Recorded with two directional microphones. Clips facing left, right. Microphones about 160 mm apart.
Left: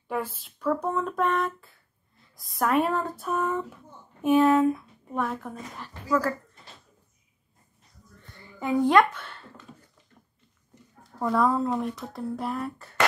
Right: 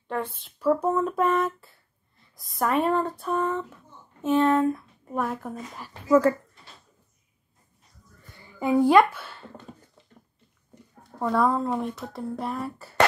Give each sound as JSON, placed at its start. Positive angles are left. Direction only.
{"t": 0.1, "sound": "speech", "side_deg": 5}
{"t": 6.0, "sound": "speech", "side_deg": -25}
{"t": 8.2, "sound": "a sound", "side_deg": -10}
{"t": 11.2, "sound": "speech", "side_deg": 0}